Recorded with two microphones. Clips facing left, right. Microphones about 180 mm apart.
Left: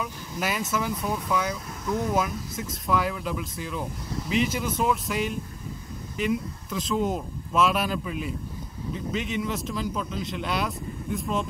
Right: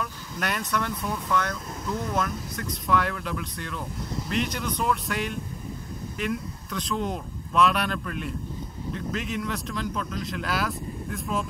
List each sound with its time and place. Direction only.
0.0 s speech: centre (ahead or behind)